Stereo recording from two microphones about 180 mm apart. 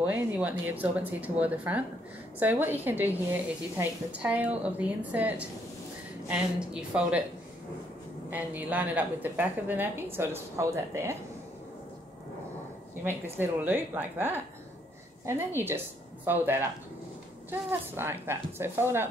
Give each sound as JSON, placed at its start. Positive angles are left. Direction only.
{"t": 0.0, "sound": "speech", "side_deg": -10}
{"t": 4.2, "sound": "speech", "side_deg": -10}
{"t": 8.3, "sound": "speech", "side_deg": -10}
{"t": 13.0, "sound": "speech", "side_deg": -10}